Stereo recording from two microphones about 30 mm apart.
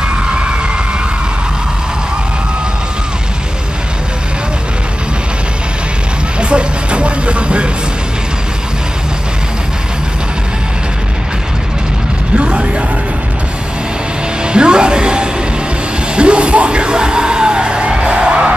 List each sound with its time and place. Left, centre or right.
6.5 s music: right
12.4 s music: right
14.4 s music: right